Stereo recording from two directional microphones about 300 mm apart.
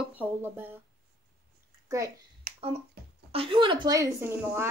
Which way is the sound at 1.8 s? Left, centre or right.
Centre.